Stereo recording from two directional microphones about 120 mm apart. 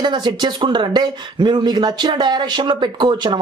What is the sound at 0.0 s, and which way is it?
Speech, 40° right (ahead or behind).